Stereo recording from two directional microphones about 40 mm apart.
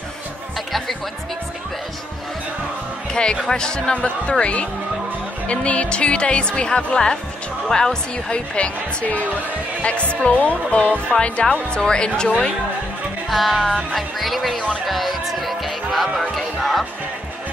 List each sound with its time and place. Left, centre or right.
0.6 s music: centre
3.1 s a woman's voice: left
8.5 s a woman's voice: left
9.8 s a woman's voice: left
13.3 s speech: centre
14.9 s music: centre
16.2 s speech: centre